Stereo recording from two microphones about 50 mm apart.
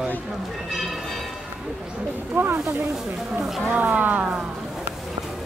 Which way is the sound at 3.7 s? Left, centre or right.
Right.